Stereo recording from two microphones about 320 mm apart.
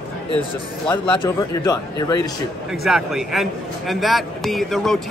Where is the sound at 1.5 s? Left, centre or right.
Centre.